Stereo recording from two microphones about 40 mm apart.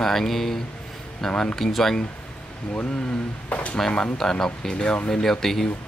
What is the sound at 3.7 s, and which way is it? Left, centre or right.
Speech, centre.